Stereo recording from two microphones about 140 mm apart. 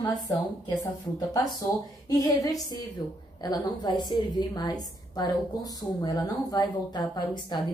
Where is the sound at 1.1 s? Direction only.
25° left (ahead or behind).